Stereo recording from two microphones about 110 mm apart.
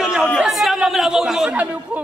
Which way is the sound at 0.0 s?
5° right (ahead or behind).